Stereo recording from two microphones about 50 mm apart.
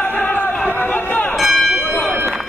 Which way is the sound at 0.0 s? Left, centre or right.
Left.